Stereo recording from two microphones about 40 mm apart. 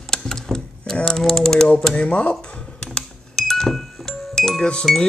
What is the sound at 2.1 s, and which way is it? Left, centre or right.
Speech, left.